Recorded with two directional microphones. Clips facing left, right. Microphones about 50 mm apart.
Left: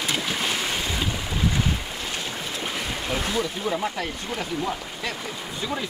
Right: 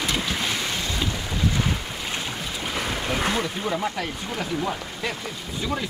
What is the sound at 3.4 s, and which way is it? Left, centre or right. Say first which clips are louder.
Snake: even; centre.